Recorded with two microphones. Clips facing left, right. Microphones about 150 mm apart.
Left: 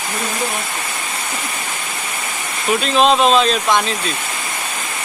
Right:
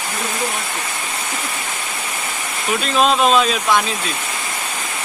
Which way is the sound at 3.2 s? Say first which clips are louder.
Left 1 dB; 5° right (ahead or behind).